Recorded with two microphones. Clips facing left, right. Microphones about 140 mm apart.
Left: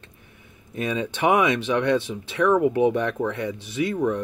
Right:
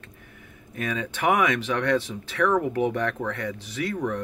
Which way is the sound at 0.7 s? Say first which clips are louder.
Left 4 dB; 20° left (ahead or behind).